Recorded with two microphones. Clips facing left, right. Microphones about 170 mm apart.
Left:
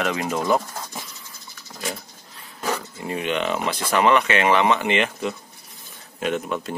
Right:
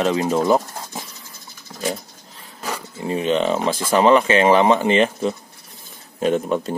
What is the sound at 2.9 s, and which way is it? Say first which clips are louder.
Speech: right 10 dB; 25° right (ahead or behind).